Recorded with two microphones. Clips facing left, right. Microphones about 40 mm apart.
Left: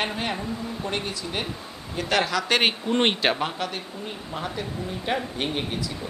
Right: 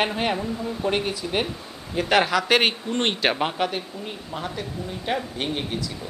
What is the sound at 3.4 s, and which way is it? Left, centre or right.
Speech, centre.